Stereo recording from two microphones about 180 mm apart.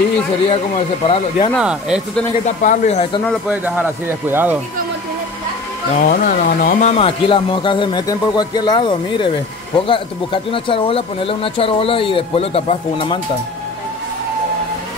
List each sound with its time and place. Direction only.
0.5 s speech: 35° left (ahead or behind)
1.6 s speech: 5° right (ahead or behind)
2.4 s speech: 45° left (ahead or behind)
3.4 s speech: 10° right (ahead or behind)
5.9 s speech: 45° left (ahead or behind); by 13.2 s 30° left (ahead or behind)